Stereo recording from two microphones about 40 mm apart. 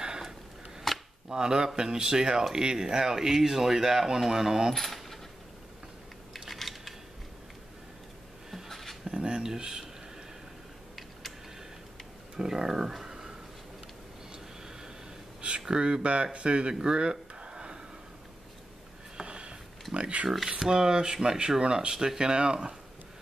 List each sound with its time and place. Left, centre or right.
0.0 s a sound: centre
0.9 s chopping: centre
1.3 s speech: centre
4.7 s keys jangling: centre
6.5 s a sound: centre
8.6 s a sound: centre
9.0 s speech: right
12.4 s speech: centre
15.6 s speech: centre
16.7 s a sound: centre
19.1 s sniff: right
19.9 s speech: right
20.4 s speech: centre